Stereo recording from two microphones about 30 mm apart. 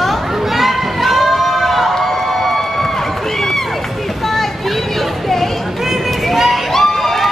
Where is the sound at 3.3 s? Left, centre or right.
Centre.